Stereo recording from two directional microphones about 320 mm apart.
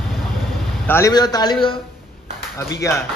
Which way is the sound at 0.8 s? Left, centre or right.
Centre.